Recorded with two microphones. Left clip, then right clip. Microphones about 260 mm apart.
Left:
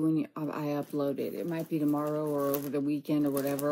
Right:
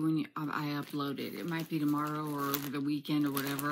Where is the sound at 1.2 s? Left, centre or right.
Centre.